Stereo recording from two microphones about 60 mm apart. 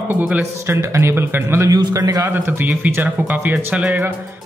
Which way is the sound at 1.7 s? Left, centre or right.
Right.